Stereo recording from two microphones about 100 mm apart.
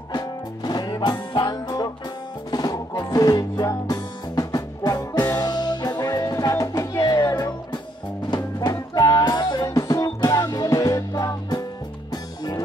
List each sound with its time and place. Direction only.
0.1 s music: 45° left (ahead or behind)